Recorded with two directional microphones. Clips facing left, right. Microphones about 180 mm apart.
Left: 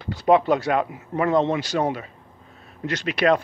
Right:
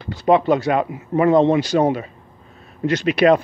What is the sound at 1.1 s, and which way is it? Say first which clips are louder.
Speech: right 6 dB; 15° right (ahead or behind).